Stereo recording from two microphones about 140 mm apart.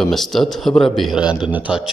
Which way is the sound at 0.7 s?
35° left (ahead or behind).